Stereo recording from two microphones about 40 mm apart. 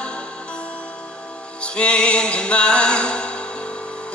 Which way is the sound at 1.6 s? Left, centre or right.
Left.